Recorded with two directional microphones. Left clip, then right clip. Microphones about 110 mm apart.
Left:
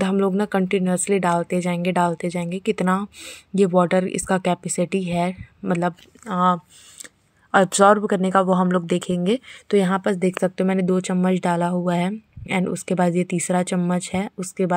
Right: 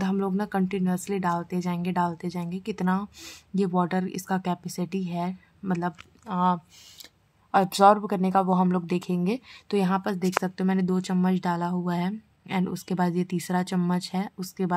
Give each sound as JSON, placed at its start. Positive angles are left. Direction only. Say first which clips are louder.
{"t": 0.0, "sound": "speech", "louder": "left 8 dB", "side_deg": 35}
{"t": 9.8, "sound": "speech", "louder": "left 6 dB", "side_deg": 30}